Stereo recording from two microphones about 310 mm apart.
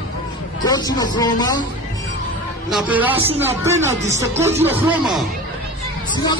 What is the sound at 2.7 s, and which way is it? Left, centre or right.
Speech, centre.